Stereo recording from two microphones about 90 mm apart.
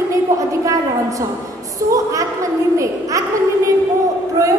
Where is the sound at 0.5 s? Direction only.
35° right (ahead or behind).